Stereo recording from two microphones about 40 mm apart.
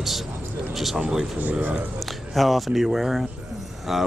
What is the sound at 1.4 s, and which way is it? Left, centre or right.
Speech, right.